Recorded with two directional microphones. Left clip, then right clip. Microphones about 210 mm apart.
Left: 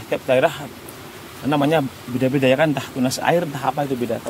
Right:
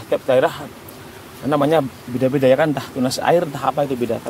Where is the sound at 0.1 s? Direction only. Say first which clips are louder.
Right 1 dB; 15° right (ahead or behind).